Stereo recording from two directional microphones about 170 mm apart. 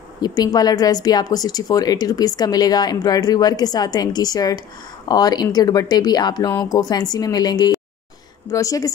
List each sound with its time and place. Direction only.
0.2 s speech: 25° left (ahead or behind)